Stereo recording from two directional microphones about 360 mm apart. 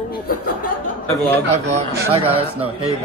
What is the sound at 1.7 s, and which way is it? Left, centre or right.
Speech, centre.